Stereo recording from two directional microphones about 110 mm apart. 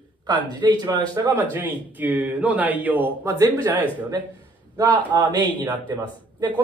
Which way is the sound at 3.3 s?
30° right (ahead or behind).